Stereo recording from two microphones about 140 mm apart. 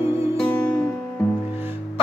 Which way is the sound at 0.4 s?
10° left (ahead or behind).